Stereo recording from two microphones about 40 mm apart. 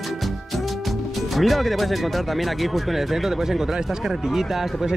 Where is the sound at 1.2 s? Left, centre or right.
Centre.